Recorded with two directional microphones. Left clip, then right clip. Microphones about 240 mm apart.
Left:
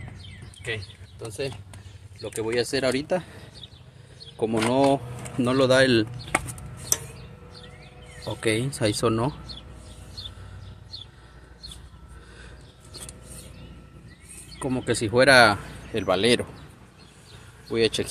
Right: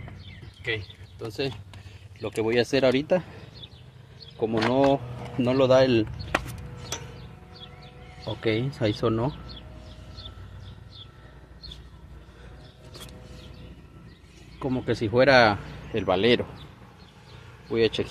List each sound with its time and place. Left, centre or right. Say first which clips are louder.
0.7 s speech: right 2 dB; centre
2.2 s speech: right 2 dB; right
4.4 s speech: left 1 dB; centre
8.4 s speech: left 1 dB; centre
14.6 s speech: left 1 dB; centre
17.6 s speech: even; centre